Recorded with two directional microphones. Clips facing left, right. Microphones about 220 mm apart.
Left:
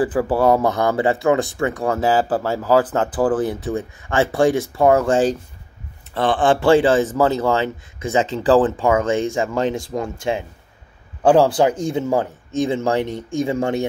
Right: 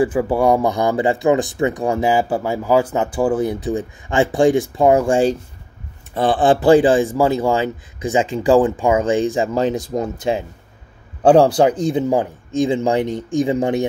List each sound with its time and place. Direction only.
0.0 s speech: 10° right (ahead or behind)